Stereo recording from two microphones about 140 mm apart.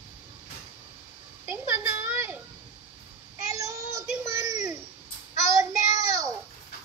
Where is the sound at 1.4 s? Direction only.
20° right (ahead or behind).